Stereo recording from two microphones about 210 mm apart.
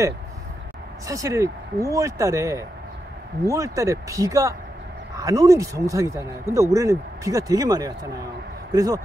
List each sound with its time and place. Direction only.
1.0 s speech: 15° right (ahead or behind)